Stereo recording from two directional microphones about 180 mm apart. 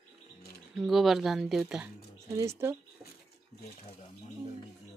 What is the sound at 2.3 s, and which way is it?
Speech, 15° right (ahead or behind).